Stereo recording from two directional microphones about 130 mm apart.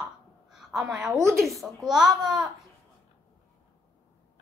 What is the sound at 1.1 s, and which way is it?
Speech, 25° right (ahead or behind).